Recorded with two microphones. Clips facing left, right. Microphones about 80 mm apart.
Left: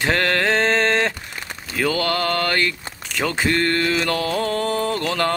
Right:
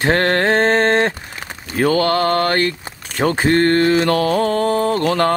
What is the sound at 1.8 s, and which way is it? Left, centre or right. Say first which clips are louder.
Mantra: right 6 dB; right.